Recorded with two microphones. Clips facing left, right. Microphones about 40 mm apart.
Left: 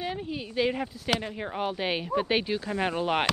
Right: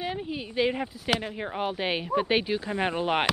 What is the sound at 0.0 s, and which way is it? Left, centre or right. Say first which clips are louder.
Speech: right 1 dB; centre.